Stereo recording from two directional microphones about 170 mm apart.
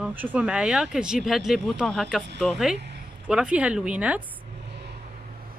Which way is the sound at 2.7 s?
90° right.